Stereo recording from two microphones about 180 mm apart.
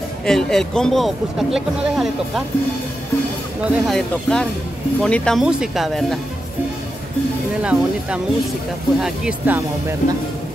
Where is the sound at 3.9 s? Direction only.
5° left (ahead or behind).